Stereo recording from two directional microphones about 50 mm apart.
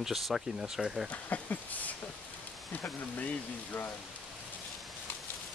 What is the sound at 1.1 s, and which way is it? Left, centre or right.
Speech, left.